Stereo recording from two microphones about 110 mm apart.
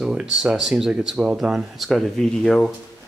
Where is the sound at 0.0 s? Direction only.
5° right (ahead or behind).